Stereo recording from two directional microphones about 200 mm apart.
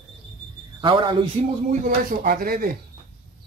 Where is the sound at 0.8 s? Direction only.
25° right (ahead or behind).